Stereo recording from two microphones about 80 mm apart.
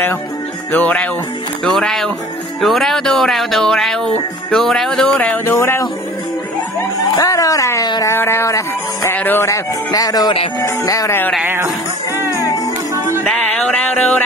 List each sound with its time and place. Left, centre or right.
0.7 s speech: left
1.6 s speech: centre
5.0 s speech: centre
5.4 s speech: left
7.2 s speech: left
8.2 s speech: left
9.1 s speech: left
9.5 s speech: left
11.4 s music: right
12.3 s music: left
13.6 s music: centre